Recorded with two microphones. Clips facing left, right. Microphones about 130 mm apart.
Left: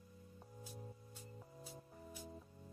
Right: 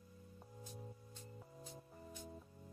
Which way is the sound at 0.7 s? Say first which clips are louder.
Even; 5° left (ahead or behind).